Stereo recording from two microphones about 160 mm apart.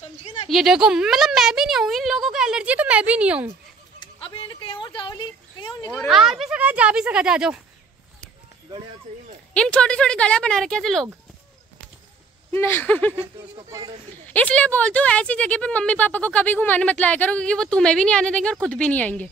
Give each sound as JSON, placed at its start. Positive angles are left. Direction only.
{"t": 0.5, "sound": "speech", "side_deg": 0}
{"t": 4.0, "sound": "a sound", "side_deg": 30}
{"t": 6.0, "sound": "speech", "side_deg": 0}
{"t": 9.5, "sound": "speech", "side_deg": 5}
{"t": 12.5, "sound": "speech", "side_deg": 15}
{"t": 13.7, "sound": "speech", "side_deg": -25}
{"t": 14.2, "sound": "speech", "side_deg": 10}